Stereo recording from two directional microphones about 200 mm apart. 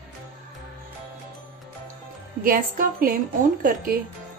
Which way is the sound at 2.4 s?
45° right (ahead or behind).